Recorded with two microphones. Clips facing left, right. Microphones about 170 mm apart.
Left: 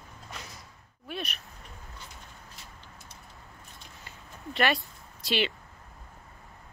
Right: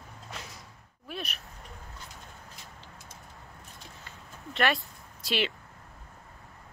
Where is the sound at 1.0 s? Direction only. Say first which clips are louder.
Left 2 dB; centre (ahead or behind).